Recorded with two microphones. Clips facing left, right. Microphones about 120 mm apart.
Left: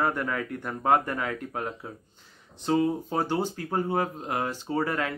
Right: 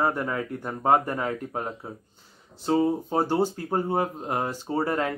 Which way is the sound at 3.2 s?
40° right (ahead or behind).